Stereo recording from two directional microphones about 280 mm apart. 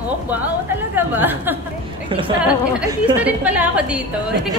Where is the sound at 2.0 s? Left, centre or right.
Centre.